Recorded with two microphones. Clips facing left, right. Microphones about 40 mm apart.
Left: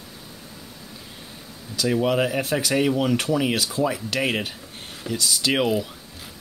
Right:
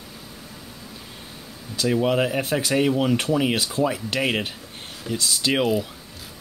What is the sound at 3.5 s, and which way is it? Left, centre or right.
Speech, right.